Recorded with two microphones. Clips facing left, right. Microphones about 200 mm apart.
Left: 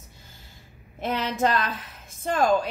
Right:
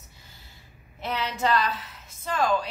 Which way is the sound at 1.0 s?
45° left (ahead or behind).